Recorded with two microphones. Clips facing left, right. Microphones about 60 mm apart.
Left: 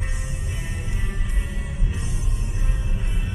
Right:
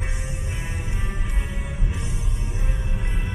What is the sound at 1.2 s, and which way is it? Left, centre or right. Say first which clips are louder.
Music: right 1 dB; right.